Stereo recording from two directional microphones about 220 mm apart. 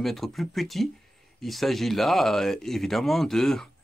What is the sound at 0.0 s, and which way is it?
Speech, centre (ahead or behind).